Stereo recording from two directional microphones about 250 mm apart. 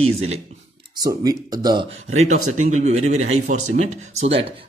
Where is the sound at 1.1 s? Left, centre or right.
Centre.